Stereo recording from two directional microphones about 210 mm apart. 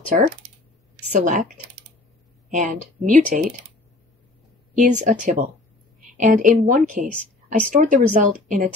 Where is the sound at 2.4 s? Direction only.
35° right (ahead or behind).